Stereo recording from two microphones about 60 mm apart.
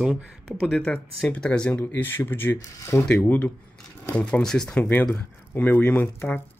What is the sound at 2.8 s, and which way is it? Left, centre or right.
Speech, left.